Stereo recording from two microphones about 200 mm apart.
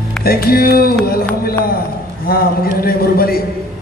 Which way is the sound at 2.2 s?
50° left (ahead or behind).